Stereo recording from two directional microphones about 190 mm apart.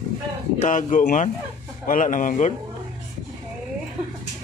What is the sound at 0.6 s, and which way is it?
A man's voice, 40° left (ahead or behind).